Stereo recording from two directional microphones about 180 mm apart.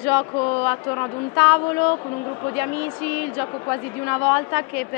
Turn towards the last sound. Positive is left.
turn(degrees=15)  # may be behind; listen again after turning